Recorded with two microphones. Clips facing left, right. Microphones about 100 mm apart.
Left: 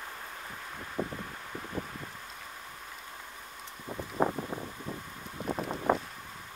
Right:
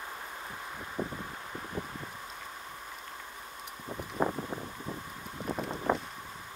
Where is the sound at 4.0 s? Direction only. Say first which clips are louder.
Left 2 dB; 20° left (ahead or behind).